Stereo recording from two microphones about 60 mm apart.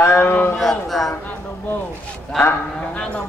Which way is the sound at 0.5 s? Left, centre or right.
Centre.